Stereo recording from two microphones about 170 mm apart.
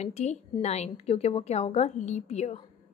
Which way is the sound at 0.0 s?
40° left (ahead or behind).